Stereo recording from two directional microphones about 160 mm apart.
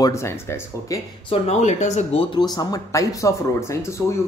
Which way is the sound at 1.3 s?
45° left (ahead or behind).